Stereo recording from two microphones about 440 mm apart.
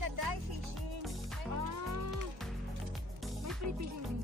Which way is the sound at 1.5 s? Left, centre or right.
Right.